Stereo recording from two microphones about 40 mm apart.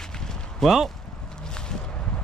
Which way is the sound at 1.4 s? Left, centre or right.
Left.